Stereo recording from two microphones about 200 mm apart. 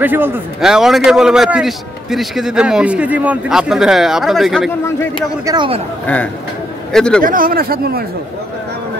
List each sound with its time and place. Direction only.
0.0 s a man's voice: 10° right (ahead or behind)
5.4 s speech: 20° right (ahead or behind)
6.9 s a man's voice: 5° left (ahead or behind)
7.2 s speech: 45° right (ahead or behind)